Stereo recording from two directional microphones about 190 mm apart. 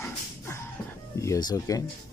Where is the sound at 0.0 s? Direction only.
15° left (ahead or behind).